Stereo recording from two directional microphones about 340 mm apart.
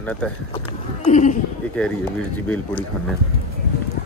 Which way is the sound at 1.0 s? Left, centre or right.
Left.